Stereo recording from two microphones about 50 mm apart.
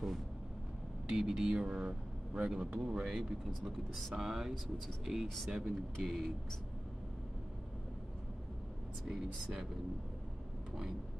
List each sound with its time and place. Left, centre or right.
1.0 s speech: centre
4.1 s speech: centre
9.0 s speech: centre